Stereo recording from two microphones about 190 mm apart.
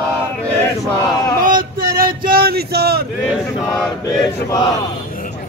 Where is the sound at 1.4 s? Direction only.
45° right (ahead or behind).